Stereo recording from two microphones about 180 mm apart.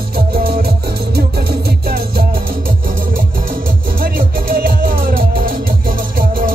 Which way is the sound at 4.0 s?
50° right (ahead or behind).